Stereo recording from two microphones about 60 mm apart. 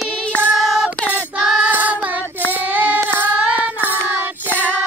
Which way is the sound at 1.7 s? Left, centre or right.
Right.